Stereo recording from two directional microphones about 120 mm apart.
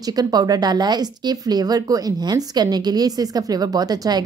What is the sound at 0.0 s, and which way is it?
Speech, 35° right (ahead or behind).